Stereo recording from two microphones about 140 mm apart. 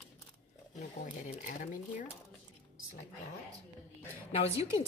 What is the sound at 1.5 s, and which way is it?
Speech, 75° left (ahead or behind).